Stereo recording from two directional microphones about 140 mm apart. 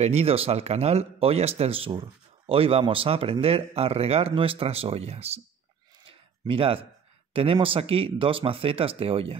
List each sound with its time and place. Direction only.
0.0 s speech: 50° right (ahead or behind)
6.0 s a sound: 40° right (ahead or behind)
7.3 s speech: 40° right (ahead or behind)